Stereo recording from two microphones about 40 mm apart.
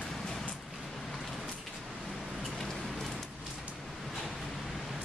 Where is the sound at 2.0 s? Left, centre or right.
Centre.